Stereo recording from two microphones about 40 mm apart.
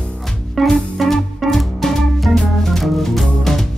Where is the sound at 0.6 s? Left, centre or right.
Centre.